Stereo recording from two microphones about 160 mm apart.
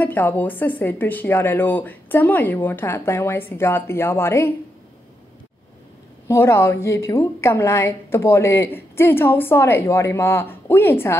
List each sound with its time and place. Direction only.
0.0 s a woman's voice: 10° left (ahead or behind)
6.2 s a woman's voice: 15° left (ahead or behind)